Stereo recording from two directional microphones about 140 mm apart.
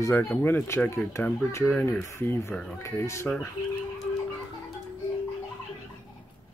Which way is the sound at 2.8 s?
20° left (ahead or behind).